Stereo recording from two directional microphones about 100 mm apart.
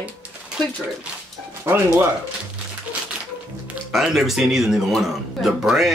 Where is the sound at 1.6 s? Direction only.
30° right (ahead or behind).